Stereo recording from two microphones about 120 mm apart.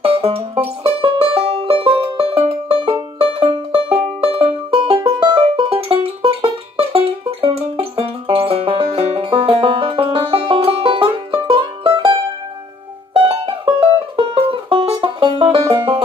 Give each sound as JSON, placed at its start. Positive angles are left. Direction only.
{"t": 0.0, "sound": "music", "side_deg": -50}
{"t": 5.2, "sound": "music", "side_deg": -40}
{"t": 5.7, "sound": "music", "side_deg": -50}
{"t": 13.1, "sound": "music", "side_deg": -50}